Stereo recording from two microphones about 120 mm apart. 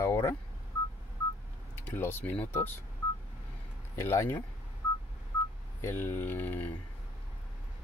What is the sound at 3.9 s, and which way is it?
Speech, 20° left (ahead or behind).